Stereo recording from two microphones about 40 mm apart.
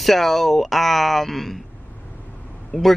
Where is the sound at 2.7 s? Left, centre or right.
Left.